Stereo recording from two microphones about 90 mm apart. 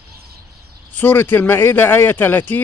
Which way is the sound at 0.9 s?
20° left (ahead or behind).